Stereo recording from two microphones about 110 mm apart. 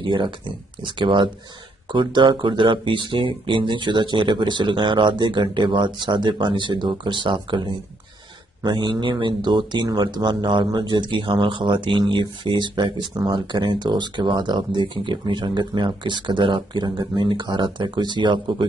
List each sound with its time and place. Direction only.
0.0 s speech: 50° right (ahead or behind)